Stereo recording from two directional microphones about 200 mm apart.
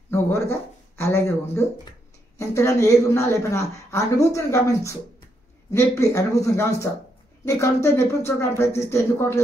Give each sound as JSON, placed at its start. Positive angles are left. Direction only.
{"t": 0.1, "sound": "speech", "side_deg": 10}